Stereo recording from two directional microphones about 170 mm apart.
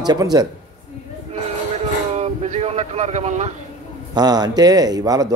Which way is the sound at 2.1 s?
40° right (ahead or behind).